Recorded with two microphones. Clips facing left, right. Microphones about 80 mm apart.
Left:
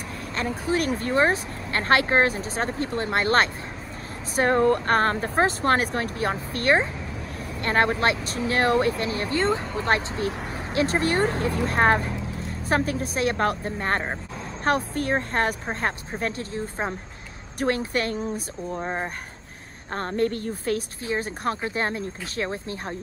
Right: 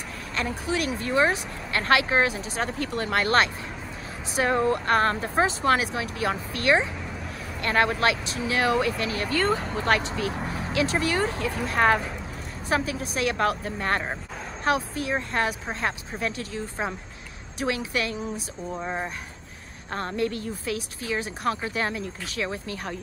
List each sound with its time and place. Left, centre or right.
0.4 s speech: left
4.4 s speech: left
10.4 s vehicle: centre
10.7 s speech: left
14.7 s speech: left
18.7 s speech: centre
19.9 s speech: left